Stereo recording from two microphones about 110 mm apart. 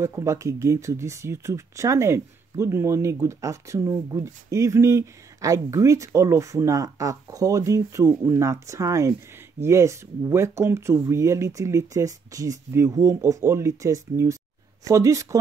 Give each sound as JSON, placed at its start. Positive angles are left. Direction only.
{"t": 0.0, "sound": "speech", "side_deg": -25}